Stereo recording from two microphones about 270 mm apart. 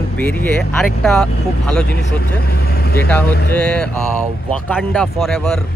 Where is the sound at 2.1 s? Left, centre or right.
Left.